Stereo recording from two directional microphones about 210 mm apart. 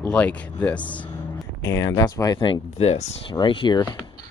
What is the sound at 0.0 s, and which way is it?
Speech, 5° left (ahead or behind).